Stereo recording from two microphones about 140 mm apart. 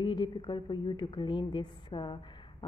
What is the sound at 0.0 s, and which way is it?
A woman's voice, 35° left (ahead or behind).